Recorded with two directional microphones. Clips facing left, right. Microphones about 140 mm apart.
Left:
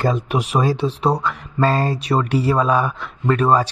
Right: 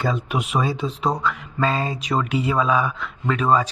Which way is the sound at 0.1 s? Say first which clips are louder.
Left 3 dB; 40° left (ahead or behind).